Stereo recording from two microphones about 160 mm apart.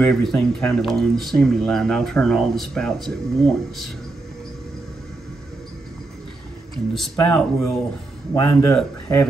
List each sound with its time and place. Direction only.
0.0 s speech: 5° left (ahead or behind)
6.7 s speech: centre (ahead or behind)
8.4 s a man's voice: 25° left (ahead or behind)
8.7 s speech: 5° left (ahead or behind)